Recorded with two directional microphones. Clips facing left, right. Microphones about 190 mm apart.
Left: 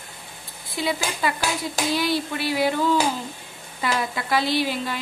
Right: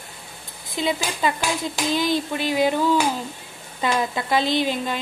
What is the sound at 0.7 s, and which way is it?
Speech, 20° right (ahead or behind).